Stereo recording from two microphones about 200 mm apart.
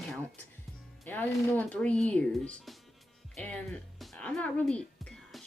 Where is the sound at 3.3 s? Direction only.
5° left (ahead or behind).